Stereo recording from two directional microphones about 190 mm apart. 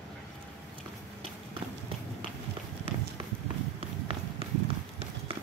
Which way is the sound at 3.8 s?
30° right (ahead or behind).